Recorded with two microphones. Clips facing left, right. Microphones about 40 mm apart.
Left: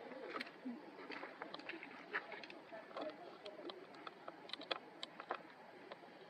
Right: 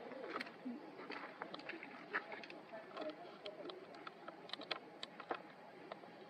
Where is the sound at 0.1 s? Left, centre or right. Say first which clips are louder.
Right 2 dB; centre.